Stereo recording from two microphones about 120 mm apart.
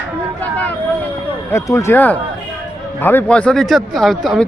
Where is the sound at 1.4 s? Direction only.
25° left (ahead or behind); by 4.4 s centre (ahead or behind).